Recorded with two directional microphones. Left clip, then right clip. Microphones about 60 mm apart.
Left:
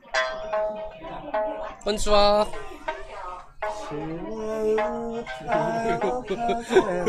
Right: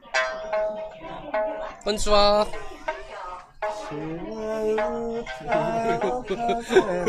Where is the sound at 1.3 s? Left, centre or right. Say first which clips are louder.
Right 1 dB; right.